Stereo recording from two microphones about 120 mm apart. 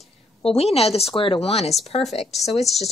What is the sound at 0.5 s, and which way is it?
A woman's voice, 55° left (ahead or behind).